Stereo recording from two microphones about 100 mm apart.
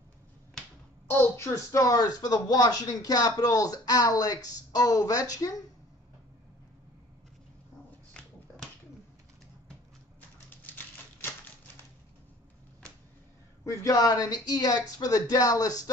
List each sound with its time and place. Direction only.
1.3 s speech: 30° left (ahead or behind)
8.1 s dog: 5° left (ahead or behind)
13.7 s speech: 35° left (ahead or behind)